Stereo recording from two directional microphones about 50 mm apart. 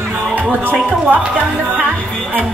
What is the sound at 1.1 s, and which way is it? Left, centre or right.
Music, right.